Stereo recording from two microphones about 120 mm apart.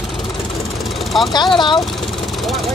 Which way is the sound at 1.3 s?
40° left (ahead or behind).